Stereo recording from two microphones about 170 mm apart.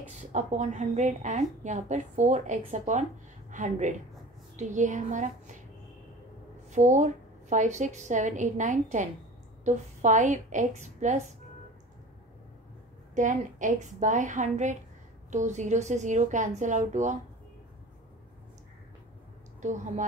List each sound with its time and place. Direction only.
0.1 s a woman's voice: 45° right (ahead or behind)
6.7 s a woman's voice: 45° right (ahead or behind)
13.1 s a woman's voice: 45° right (ahead or behind)
19.6 s a woman's voice: 45° right (ahead or behind)